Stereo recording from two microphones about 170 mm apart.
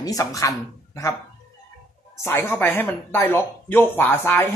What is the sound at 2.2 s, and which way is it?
Speech, 15° left (ahead or behind).